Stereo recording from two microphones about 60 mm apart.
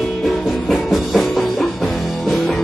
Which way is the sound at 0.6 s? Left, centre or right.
Centre.